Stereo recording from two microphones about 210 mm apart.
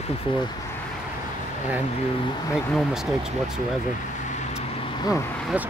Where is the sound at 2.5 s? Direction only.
Centre (ahead or behind).